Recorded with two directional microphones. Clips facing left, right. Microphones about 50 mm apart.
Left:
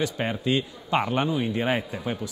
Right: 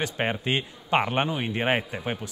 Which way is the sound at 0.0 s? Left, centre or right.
Right.